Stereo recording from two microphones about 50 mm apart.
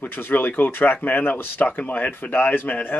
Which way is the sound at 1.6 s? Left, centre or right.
Left.